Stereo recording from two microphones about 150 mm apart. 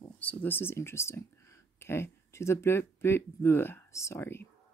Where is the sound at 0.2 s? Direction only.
10° left (ahead or behind).